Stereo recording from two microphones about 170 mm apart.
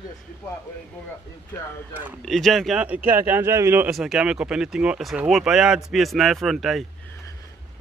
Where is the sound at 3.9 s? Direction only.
Centre (ahead or behind).